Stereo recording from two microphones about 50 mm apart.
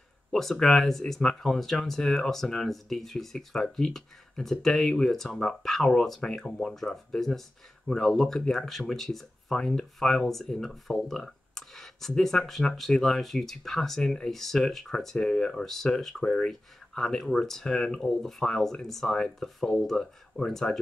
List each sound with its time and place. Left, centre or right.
0.3 s speech: centre